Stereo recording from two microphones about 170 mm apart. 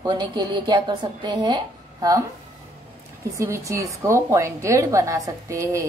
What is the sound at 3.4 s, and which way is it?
A woman's voice, 15° right (ahead or behind).